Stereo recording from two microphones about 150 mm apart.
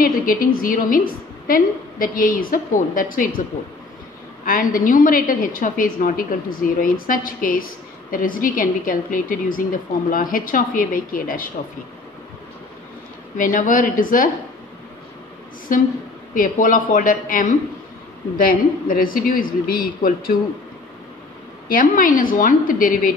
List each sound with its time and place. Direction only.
0.0 s a woman's voice: 65° left (ahead or behind)
4.5 s a woman's voice: 65° left (ahead or behind)
13.4 s a woman's voice: 60° left (ahead or behind)
15.7 s a woman's voice: 65° left (ahead or behind)
21.6 s a woman's voice: 65° left (ahead or behind)